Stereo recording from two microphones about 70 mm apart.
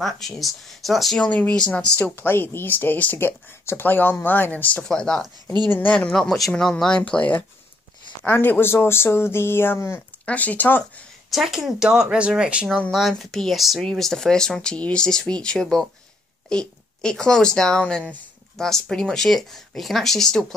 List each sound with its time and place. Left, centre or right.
0.0 s speech: centre
1.1 s speech: centre
2.1 s speech: left
4.8 s speech: centre
5.7 s speech: left
6.1 s speech: centre
7.0 s speech: centre; by 10.0 s left
10.2 s speech: left
11.2 s speech: centre
13.2 s speech: centre